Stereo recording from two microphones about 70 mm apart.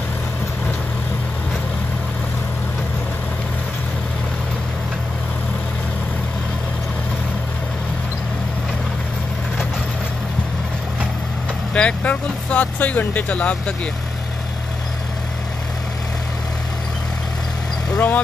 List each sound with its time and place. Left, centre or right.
11.7 s speech: centre
17.9 s speech: left